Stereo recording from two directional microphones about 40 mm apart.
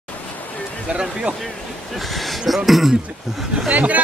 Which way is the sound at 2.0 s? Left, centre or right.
Centre.